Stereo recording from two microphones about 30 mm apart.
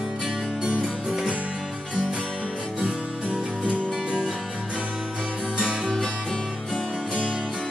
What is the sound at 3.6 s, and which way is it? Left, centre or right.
Music, right.